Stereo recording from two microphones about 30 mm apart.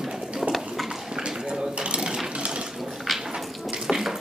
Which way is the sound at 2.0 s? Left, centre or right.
Right.